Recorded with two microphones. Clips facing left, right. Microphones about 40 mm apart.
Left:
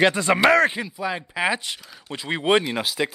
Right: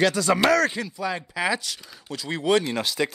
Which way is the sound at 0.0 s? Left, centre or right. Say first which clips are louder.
Left 3 dB; left.